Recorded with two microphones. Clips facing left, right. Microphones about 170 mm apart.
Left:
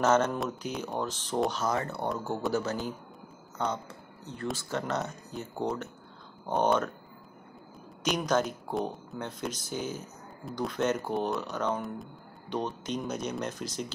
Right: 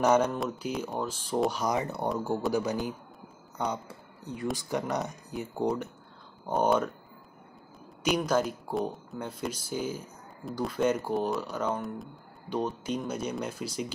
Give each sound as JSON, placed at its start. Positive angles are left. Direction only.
{"t": 0.0, "sound": "speech", "side_deg": -15}
{"t": 8.2, "sound": "speech", "side_deg": -5}